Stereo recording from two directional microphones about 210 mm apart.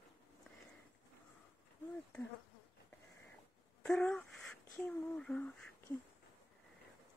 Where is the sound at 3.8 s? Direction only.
Centre (ahead or behind).